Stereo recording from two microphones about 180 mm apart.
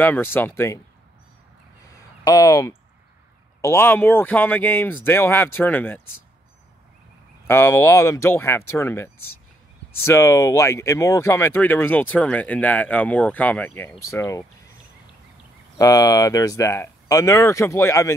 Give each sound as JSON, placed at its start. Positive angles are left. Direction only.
{"t": 0.0, "sound": "speech", "side_deg": 10}
{"t": 2.0, "sound": "a sound", "side_deg": 20}
{"t": 3.6, "sound": "speech", "side_deg": 10}
{"t": 7.4, "sound": "speech", "side_deg": 15}
{"t": 15.8, "sound": "speech", "side_deg": 20}